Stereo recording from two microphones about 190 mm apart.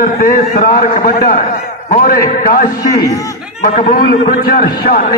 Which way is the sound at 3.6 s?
45° left (ahead or behind).